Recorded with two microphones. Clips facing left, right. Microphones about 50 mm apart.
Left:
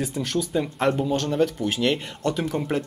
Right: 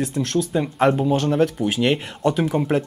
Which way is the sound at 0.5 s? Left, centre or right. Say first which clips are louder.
Right 4 dB; centre.